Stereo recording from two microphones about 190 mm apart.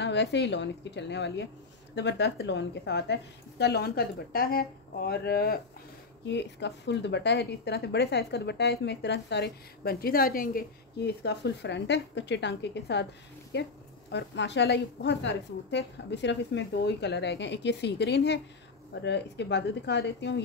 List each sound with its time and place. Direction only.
0.0 s a woman's voice: 65° left (ahead or behind)
6.2 s speech: 65° left (ahead or behind); by 10.6 s 50° left (ahead or behind)
11.2 s speech: 65° left (ahead or behind)